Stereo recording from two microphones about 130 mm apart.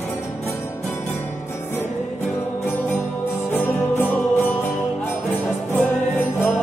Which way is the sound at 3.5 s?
15° left (ahead or behind).